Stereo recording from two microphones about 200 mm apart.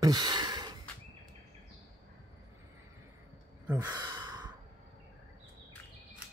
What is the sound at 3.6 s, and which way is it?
Gasp, 15° right (ahead or behind).